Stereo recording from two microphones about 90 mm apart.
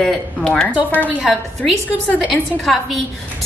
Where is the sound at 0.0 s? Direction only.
10° left (ahead or behind).